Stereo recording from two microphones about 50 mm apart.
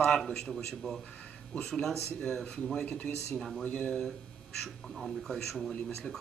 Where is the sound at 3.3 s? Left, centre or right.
Centre.